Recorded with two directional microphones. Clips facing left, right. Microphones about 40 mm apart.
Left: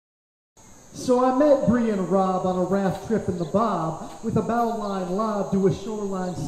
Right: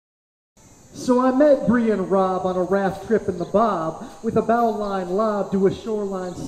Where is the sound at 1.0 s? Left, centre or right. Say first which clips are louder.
Right 2 dB; centre.